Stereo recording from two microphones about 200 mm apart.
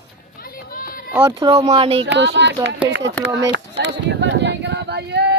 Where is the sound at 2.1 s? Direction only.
60° right (ahead or behind).